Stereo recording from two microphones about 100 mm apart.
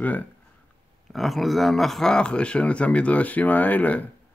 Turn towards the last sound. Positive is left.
turn(degrees=15)  # may be behind; listen again after turning